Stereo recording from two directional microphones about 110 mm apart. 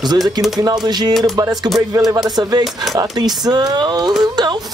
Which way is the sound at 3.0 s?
35° right (ahead or behind).